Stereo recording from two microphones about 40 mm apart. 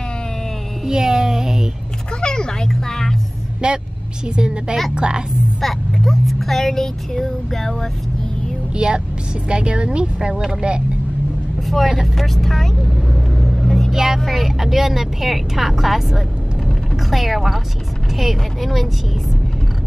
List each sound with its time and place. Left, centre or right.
0.8 s speech: centre
2.2 s speech: centre
3.6 s a woman's voice: right
5.6 s speech: centre
8.7 s a woman's voice: right
11.6 s speech: centre
12.8 s vehicle: centre
13.9 s speech: centre
16.6 s a sound: centre
18.1 s speech: centre